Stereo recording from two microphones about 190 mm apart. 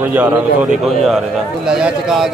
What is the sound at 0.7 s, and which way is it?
Speech, centre (ahead or behind).